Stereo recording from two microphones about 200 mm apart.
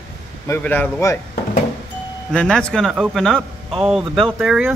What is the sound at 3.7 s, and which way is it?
Speech, 25° right (ahead or behind).